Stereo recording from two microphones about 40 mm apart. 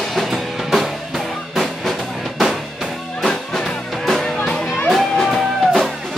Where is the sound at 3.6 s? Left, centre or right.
Centre.